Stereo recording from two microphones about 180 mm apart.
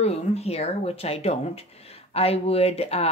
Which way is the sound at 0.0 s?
35° left (ahead or behind).